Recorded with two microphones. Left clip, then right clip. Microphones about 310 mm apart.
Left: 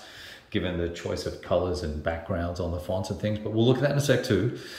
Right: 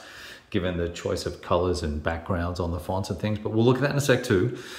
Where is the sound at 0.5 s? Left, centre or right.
Centre.